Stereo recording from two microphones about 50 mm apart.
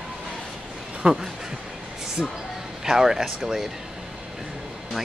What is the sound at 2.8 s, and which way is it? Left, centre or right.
Speech, centre.